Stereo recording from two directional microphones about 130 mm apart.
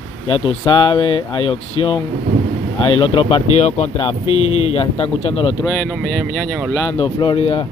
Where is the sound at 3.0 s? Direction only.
45° left (ahead or behind).